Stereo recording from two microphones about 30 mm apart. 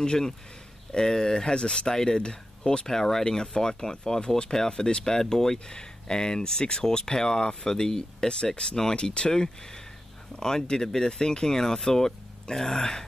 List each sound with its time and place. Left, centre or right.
0.0 s speech: left
2.9 s speech: centre
5.7 s speech: left
8.9 s speech: left